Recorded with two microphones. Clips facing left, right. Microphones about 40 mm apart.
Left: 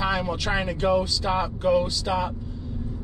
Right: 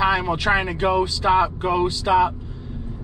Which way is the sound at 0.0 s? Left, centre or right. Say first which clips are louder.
Right 6 dB; right.